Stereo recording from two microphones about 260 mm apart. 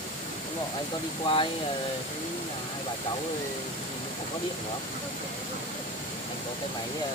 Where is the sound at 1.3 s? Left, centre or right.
Centre.